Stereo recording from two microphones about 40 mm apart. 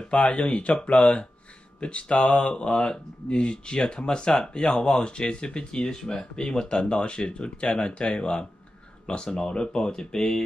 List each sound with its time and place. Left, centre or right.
0.1 s speech: left; by 10.4 s centre